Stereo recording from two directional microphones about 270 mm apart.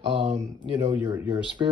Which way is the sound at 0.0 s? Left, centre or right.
Right.